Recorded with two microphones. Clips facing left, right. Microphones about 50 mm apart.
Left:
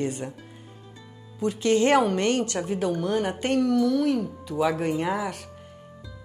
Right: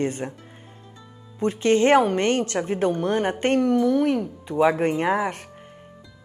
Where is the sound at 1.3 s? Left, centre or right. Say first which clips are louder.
Right 2 dB; right.